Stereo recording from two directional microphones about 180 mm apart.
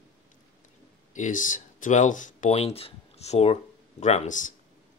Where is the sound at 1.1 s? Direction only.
45° left (ahead or behind).